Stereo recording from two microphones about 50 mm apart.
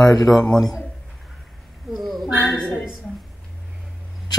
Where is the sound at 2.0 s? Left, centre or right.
Centre.